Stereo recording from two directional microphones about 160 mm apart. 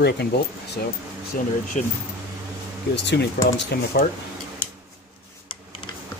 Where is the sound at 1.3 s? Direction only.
60° left (ahead or behind).